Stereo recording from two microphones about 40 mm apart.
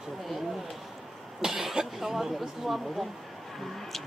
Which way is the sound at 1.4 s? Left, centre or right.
Centre.